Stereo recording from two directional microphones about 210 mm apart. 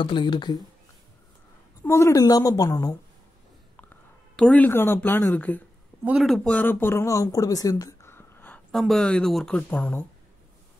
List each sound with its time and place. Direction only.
0.0 s speech: 20° left (ahead or behind)
1.8 s speech: 10° left (ahead or behind)
4.4 s speech: 5° left (ahead or behind)